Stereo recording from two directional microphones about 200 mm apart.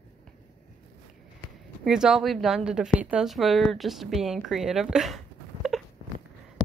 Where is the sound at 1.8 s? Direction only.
5° right (ahead or behind).